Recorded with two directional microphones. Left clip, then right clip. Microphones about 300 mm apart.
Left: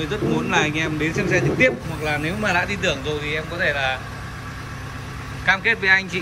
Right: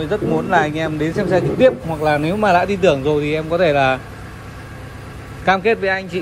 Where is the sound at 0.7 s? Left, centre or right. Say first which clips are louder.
Right 2 dB; right.